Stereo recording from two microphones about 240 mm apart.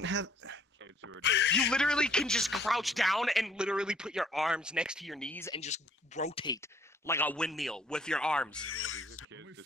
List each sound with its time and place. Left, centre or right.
0.0 s a sound: right
1.2 s speech: left
1.5 s speech: centre
5.5 s speech: left; by 8.6 s centre
8.6 s speech: left
9.3 s a sound: right